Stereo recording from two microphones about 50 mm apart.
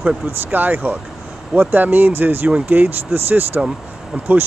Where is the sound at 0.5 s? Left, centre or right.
Right.